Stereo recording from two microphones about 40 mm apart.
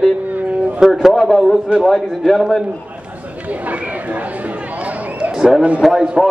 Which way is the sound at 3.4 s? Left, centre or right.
Right.